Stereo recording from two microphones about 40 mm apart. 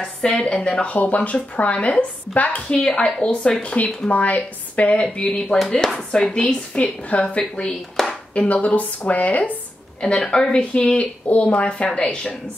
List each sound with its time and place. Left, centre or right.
0.0 s a woman's voice: left
0.9 s speech: left
2.9 s a woman's voice: left
4.9 s a woman's voice: left
5.3 s speech: centre
6.8 s a woman's voice: left
8.0 s a sound: centre
8.4 s speech: left
10.2 s speech: centre
10.7 s speech: left